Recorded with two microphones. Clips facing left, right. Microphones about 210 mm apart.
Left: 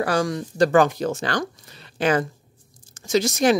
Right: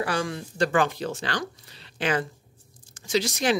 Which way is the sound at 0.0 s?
40° left (ahead or behind).